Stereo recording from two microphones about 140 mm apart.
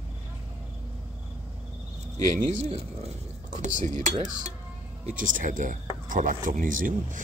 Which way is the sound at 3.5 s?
60° right (ahead or behind).